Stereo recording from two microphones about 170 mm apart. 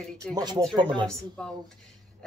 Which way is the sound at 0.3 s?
20° right (ahead or behind).